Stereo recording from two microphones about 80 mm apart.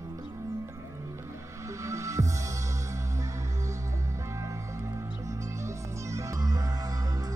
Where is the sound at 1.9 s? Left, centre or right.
Right.